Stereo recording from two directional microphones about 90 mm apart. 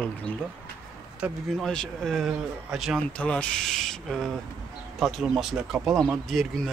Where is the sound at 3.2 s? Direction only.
10° left (ahead or behind).